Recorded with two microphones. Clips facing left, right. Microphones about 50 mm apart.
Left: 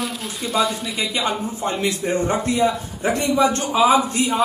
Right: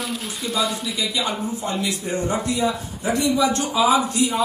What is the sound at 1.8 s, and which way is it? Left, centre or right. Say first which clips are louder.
A man's voice: left 3 dB; left.